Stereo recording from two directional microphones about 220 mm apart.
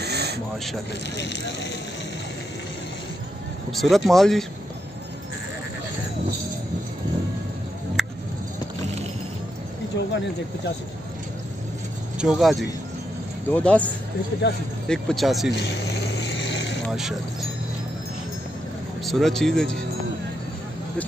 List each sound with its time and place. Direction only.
0.0 s a sound: 50° right (ahead or behind)
1.1 s speech: 55° left (ahead or behind)
3.7 s speech: centre (ahead or behind)
9.9 s a sound: 55° left (ahead or behind)
12.2 s speech: centre (ahead or behind)
16.2 s vehicle: 50° left (ahead or behind)
19.0 s speech: centre (ahead or behind)